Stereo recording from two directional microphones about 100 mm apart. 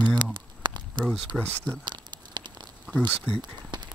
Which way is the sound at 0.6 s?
50° right (ahead or behind).